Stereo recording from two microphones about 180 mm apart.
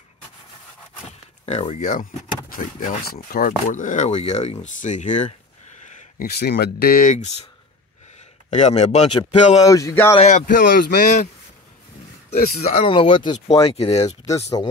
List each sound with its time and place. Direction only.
1.4 s speech: 35° left (ahead or behind)
5.9 s speech: 55° left (ahead or behind)
8.5 s speech: 40° left (ahead or behind)
9.7 s speech: 20° left (ahead or behind)
10.1 s speech: 40° left (ahead or behind)
12.6 s speech: 30° left (ahead or behind)